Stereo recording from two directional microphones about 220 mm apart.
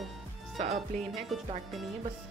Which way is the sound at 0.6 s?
30° right (ahead or behind).